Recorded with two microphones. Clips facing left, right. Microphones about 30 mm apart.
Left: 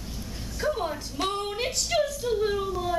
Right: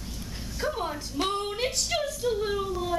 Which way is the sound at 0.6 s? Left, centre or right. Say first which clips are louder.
Left 2 dB; centre.